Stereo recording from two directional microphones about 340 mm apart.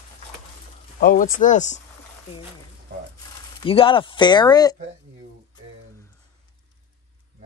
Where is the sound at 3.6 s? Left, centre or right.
Centre.